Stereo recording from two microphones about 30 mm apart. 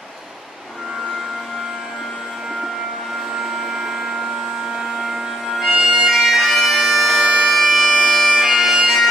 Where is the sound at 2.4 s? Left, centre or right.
Centre.